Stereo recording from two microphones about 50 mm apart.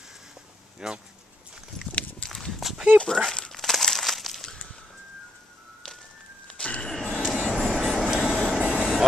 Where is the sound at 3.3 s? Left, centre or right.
Centre.